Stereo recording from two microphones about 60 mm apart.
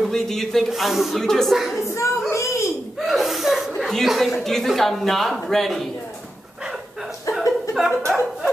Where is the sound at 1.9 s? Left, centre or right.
Left.